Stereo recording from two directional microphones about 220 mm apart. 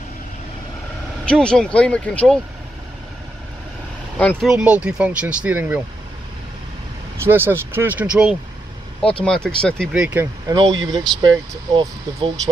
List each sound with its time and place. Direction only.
1.2 s speech: 5° left (ahead or behind)
4.2 s speech: 5° left (ahead or behind)
7.2 s speech: 10° right (ahead or behind)
10.5 s speech: 20° right (ahead or behind)